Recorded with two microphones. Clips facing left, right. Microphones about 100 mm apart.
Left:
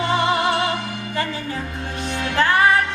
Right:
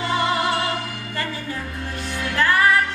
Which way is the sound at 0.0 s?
20° left (ahead or behind).